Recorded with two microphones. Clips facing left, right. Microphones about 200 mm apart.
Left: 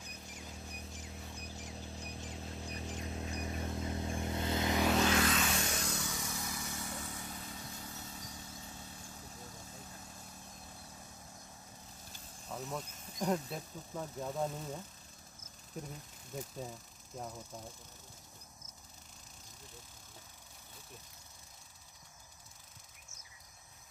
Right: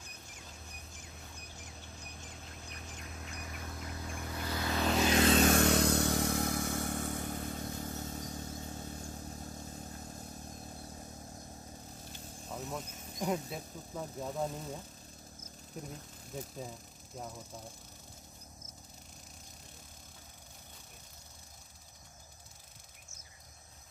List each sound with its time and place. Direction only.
2.5 s a sound: 30° left (ahead or behind)
5.0 s vehicle: 25° right (ahead or behind)
5.4 s vehicle: 55° right (ahead or behind)
12.4 s insect: centre (ahead or behind)
13.2 s speech: 5° right (ahead or behind)